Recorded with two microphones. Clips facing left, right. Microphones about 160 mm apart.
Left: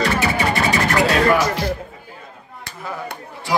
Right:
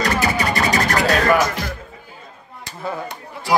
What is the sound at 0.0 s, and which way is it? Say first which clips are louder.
Music: left 1 dB; 40° right (ahead or behind).